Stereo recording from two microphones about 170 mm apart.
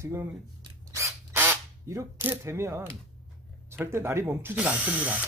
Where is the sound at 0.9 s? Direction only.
15° right (ahead or behind).